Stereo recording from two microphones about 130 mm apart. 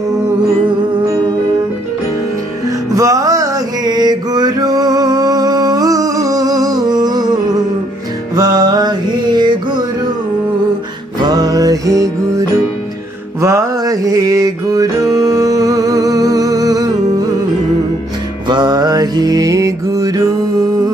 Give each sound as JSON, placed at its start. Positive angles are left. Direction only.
{"t": 2.9, "sound": "mantra", "side_deg": -25}
{"t": 8.4, "sound": "mantra", "side_deg": -30}
{"t": 11.1, "sound": "music", "side_deg": -30}
{"t": 15.1, "sound": "humming", "side_deg": -25}
{"t": 18.5, "sound": "mantra", "side_deg": -30}